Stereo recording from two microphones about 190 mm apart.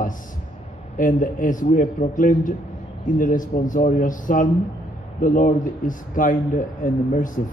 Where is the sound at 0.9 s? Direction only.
45° left (ahead or behind).